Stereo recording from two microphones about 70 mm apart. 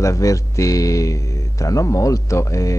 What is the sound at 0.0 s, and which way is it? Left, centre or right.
Speech, left.